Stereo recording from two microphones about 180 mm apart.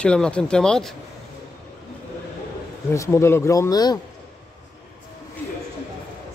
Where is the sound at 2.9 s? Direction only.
15° left (ahead or behind).